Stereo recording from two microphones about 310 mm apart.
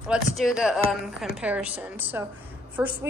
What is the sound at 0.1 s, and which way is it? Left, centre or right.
A woman's voice, centre.